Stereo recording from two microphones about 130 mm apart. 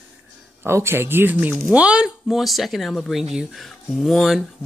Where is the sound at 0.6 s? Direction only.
20° right (ahead or behind).